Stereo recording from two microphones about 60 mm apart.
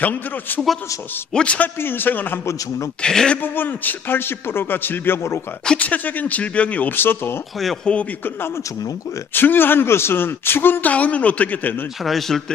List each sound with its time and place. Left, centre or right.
0.0 s speech: left
1.3 s speech: centre
1.8 s speech: left
3.0 s speech: centre
3.5 s speech: left
5.8 s speech: left
7.0 s speech: left
7.8 s speech: centre
9.3 s speech: left
12.0 s speech: centre